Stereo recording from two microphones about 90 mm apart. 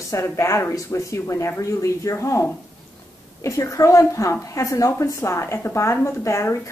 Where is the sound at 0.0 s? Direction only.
35° left (ahead or behind).